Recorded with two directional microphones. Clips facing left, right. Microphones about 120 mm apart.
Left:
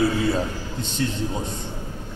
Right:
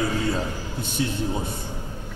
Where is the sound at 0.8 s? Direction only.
10° right (ahead or behind).